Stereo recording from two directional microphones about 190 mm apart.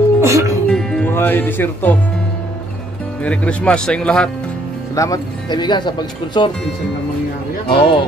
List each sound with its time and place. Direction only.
0.2 s music: 15° right (ahead or behind)
0.7 s music: 5° left (ahead or behind)
3.3 s speech: 5° left (ahead or behind)
4.9 s speech: 15° left (ahead or behind)
7.6 s speech: 25° left (ahead or behind)